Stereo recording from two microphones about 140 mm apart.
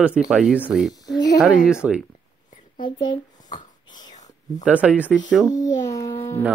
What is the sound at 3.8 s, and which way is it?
Whispering, 30° left (ahead or behind).